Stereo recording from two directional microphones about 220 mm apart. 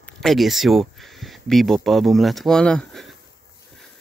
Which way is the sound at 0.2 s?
Centre (ahead or behind).